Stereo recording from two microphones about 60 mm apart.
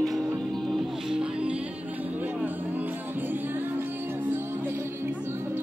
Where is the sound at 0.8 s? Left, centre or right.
Centre.